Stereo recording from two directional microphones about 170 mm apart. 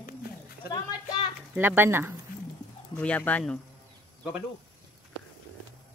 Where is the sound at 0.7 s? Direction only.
20° left (ahead or behind).